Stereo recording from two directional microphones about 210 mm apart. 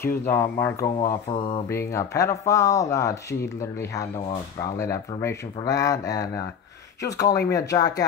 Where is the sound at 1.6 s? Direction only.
10° left (ahead or behind).